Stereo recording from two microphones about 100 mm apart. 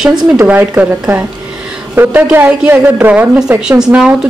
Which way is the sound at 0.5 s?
15° right (ahead or behind).